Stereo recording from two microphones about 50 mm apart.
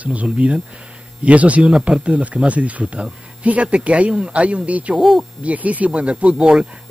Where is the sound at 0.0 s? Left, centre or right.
Right.